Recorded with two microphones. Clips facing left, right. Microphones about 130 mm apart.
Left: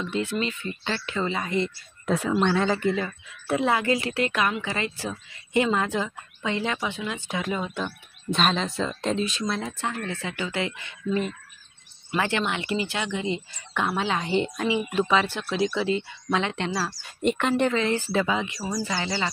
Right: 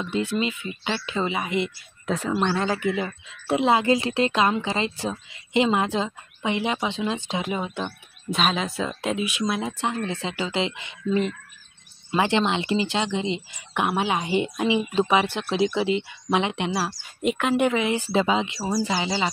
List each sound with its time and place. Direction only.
0.0 s speech: 15° right (ahead or behind)
3.0 s a woman's voice: 20° right (ahead or behind)
8.3 s a woman's voice: 5° right (ahead or behind)
17.2 s speech: 5° right (ahead or behind); by 18.6 s 20° right (ahead or behind)
18.6 s speech: 35° right (ahead or behind)
18.9 s speech: 15° right (ahead or behind)